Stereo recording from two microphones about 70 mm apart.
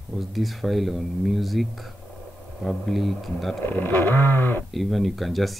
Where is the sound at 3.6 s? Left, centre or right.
Left.